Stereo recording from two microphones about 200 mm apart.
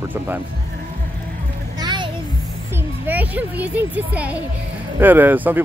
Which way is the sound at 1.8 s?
20° right (ahead or behind).